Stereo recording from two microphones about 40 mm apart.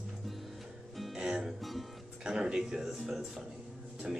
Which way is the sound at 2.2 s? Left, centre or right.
Centre.